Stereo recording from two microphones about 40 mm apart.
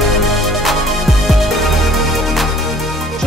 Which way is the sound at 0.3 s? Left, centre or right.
Centre.